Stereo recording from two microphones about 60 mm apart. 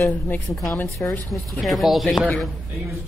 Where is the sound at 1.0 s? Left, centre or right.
Left.